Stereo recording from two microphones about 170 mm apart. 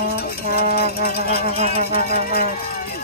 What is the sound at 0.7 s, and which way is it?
Music, 65° left (ahead or behind).